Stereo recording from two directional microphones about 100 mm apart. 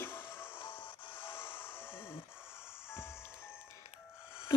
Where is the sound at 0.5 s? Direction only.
60° left (ahead or behind).